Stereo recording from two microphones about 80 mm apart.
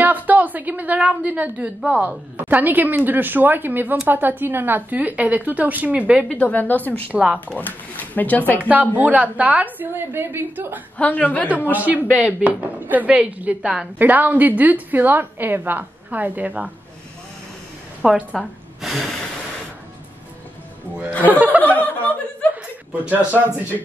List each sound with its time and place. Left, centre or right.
0.0 s a woman's voice: right
6.2 s speech: left
7.1 s speech: centre
7.3 s speech: centre
8.5 s a woman's voice: centre
11.0 s a woman's voice: centre
11.7 s a woman's voice: centre
18.0 s a woman's voice: centre
18.8 s gasp: centre
21.3 s a woman's voice: right
21.6 s chuckle: left
22.9 s a woman's voice: right